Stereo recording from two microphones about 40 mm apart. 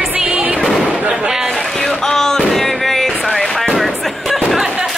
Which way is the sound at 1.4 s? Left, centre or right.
Centre.